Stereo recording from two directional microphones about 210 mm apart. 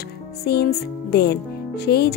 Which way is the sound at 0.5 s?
50° left (ahead or behind).